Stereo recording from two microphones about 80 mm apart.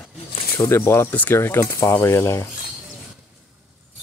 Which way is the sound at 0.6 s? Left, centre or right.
Left.